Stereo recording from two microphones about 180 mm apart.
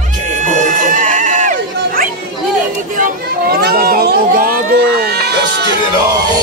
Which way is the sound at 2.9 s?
55° right (ahead or behind).